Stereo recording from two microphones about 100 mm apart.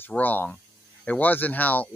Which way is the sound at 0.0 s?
15° left (ahead or behind).